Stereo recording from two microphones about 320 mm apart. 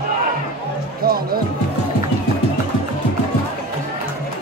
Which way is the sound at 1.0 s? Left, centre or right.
Right.